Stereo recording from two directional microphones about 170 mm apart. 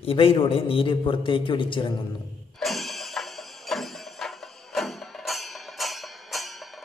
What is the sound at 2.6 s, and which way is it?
Music, centre (ahead or behind).